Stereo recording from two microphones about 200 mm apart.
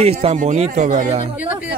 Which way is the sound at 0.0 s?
30° right (ahead or behind).